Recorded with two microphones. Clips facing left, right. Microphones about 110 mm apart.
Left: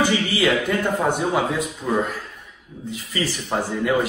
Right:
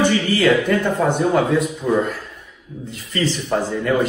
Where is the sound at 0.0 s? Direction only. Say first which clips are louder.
Right 3 dB; 15° left (ahead or behind).